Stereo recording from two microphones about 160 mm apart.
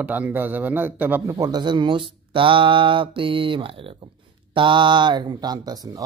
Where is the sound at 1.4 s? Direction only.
25° right (ahead or behind).